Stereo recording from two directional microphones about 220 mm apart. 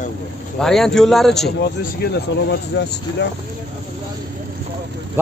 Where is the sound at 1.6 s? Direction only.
50° left (ahead or behind).